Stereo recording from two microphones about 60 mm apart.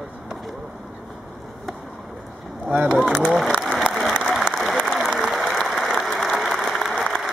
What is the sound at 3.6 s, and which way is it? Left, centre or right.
Applause, centre.